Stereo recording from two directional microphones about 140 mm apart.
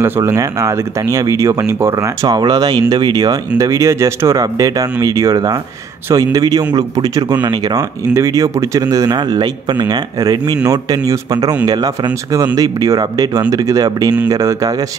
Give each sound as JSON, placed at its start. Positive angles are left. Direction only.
{"t": 0.0, "sound": "speech", "side_deg": -20}